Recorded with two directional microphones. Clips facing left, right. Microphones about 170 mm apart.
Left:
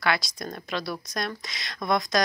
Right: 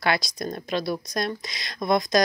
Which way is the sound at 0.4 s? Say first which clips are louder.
Right 4 dB; 30° right (ahead or behind).